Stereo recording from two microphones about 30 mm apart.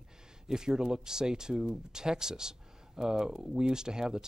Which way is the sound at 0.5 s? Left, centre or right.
Right.